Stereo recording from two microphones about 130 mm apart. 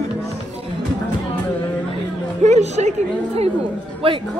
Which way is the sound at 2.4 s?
60° right (ahead or behind).